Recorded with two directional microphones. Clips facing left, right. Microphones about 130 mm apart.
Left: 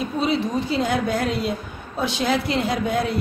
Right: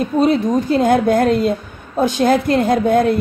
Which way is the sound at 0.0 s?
50° right (ahead or behind).